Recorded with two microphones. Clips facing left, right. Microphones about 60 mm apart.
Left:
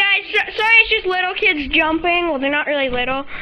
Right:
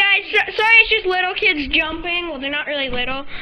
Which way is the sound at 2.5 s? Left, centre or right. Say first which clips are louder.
Left 4 dB; centre.